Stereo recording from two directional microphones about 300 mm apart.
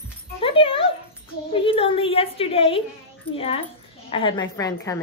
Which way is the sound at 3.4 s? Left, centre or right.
Centre.